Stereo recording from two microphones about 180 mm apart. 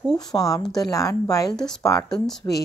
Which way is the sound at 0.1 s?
20° left (ahead or behind).